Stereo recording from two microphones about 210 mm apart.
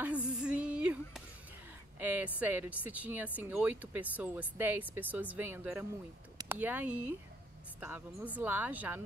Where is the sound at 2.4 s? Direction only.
5° right (ahead or behind).